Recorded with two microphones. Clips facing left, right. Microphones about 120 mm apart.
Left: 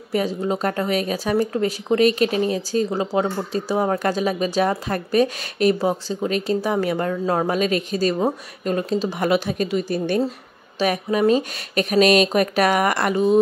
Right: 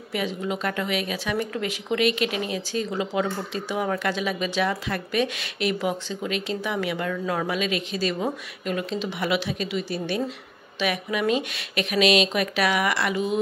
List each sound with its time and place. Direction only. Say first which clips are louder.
0.1 s speech: left 6 dB; 40° left (ahead or behind)